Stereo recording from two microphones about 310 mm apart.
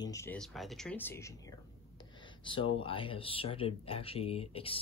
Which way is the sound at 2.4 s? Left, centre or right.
Centre.